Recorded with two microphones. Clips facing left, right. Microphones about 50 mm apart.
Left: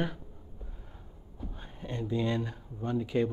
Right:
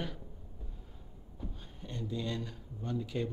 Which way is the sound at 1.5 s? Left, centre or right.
Left.